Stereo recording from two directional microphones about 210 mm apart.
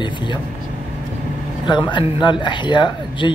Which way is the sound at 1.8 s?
20° left (ahead or behind).